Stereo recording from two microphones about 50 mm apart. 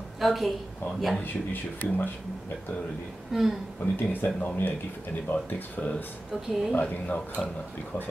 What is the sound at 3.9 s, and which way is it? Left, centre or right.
Speech, left.